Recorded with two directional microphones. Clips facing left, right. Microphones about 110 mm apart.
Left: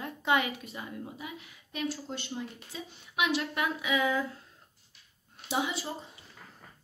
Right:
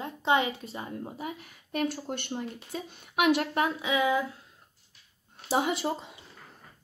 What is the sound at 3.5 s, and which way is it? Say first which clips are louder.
Speech: right 4 dB; 40° right (ahead or behind).